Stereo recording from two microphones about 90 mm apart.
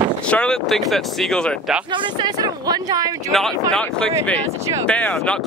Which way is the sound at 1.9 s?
60° right (ahead or behind).